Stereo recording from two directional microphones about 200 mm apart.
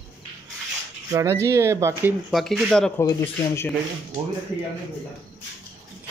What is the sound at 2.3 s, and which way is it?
Speech, centre (ahead or behind).